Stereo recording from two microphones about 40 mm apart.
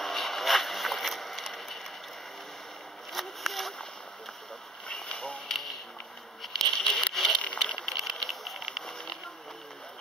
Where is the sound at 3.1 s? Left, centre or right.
Centre.